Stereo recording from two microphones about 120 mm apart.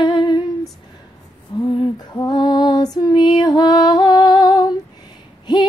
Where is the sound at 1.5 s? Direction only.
40° left (ahead or behind).